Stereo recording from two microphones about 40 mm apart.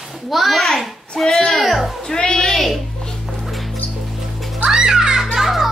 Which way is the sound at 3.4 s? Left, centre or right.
Centre.